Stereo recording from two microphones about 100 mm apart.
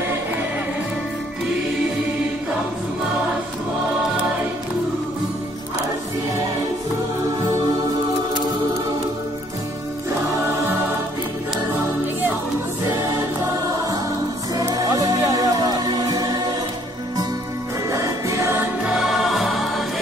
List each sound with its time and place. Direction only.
14.6 s music: 35° right (ahead or behind)
17.8 s music: 35° right (ahead or behind); by 18.9 s 20° right (ahead or behind)
18.9 s music: centre (ahead or behind)